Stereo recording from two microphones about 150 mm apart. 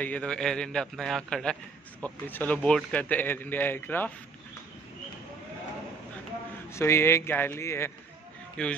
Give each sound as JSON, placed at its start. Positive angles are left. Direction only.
{"t": 0.0, "sound": "a man's voice", "side_deg": 10}
{"t": 6.7, "sound": "speech", "side_deg": 15}
{"t": 8.6, "sound": "speech", "side_deg": 5}